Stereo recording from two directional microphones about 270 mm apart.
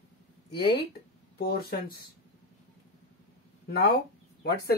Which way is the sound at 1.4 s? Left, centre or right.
Left.